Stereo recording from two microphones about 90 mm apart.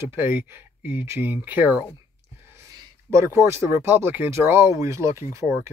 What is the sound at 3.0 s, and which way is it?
Speech, 30° right (ahead or behind).